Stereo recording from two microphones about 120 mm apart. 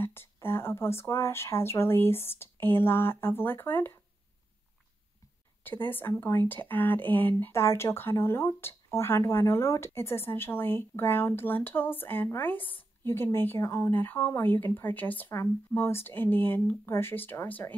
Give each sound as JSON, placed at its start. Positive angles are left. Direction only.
{"t": 0.0, "sound": "speech", "side_deg": 20}
{"t": 5.6, "sound": "speech", "side_deg": 15}